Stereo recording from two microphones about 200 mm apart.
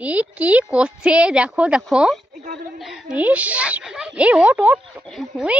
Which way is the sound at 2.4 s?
45° right (ahead or behind).